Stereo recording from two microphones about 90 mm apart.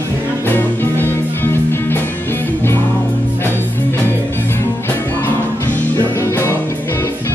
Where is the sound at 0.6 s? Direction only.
25° left (ahead or behind).